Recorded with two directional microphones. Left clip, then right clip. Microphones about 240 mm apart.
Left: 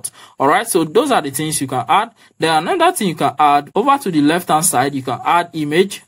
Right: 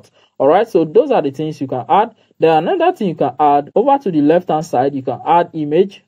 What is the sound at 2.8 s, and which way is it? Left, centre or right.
Speech, left.